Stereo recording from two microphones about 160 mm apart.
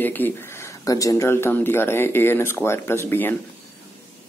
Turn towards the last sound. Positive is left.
turn(degrees=15)  # may be behind; listen again after turning